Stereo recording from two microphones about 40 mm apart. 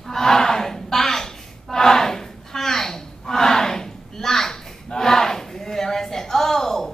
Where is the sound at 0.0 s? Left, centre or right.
Centre.